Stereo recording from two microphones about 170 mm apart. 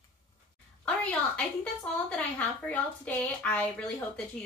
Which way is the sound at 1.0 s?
5° left (ahead or behind).